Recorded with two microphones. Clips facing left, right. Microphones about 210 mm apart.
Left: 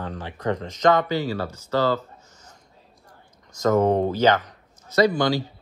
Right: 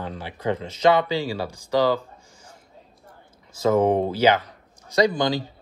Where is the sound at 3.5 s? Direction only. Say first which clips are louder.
Even; 10° right (ahead or behind).